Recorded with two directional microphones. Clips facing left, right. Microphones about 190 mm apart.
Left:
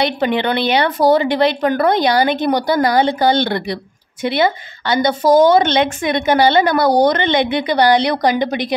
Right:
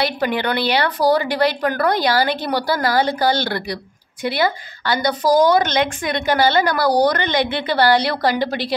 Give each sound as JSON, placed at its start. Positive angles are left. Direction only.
{"t": 0.0, "sound": "speech", "side_deg": 25}